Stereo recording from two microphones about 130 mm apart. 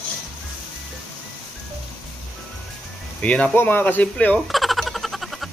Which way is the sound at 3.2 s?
10° left (ahead or behind).